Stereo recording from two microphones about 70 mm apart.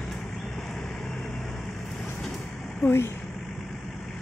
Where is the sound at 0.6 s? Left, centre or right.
Centre.